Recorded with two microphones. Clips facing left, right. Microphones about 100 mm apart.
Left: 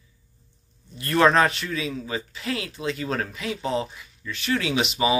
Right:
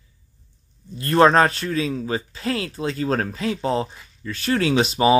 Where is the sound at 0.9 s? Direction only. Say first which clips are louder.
Right 4 dB; 35° right (ahead or behind).